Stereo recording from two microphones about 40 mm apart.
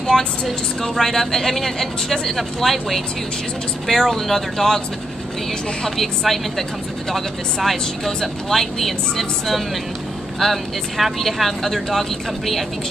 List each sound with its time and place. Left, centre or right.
0.0 s vehicle: centre
0.8 s speech: centre
5.9 s speech: centre